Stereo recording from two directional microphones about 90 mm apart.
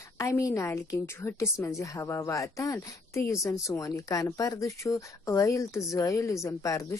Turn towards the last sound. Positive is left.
turn(degrees=35)  # may be behind; listen again after turning